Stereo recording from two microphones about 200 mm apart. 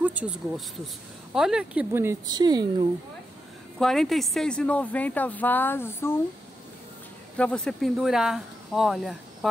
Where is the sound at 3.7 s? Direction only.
Centre (ahead or behind).